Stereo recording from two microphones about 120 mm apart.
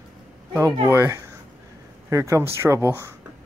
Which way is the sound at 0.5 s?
20° right (ahead or behind).